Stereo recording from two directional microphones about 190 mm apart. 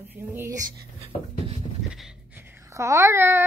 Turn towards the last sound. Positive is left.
turn(degrees=-10)  # may be behind; listen again after turning